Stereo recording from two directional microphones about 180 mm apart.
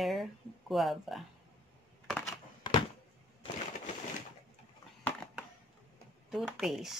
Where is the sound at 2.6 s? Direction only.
25° left (ahead or behind).